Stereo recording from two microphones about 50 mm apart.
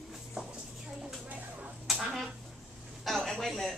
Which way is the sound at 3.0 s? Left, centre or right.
Centre.